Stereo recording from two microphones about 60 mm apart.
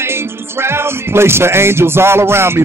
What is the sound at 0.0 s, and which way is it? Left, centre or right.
Music, right.